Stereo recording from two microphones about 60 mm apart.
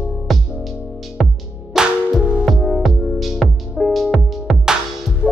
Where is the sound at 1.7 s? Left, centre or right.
Centre.